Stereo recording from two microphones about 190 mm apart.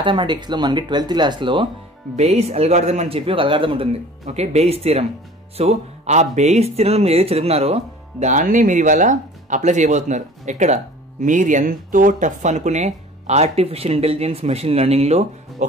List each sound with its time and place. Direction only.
0.0 s speech: 25° right (ahead or behind)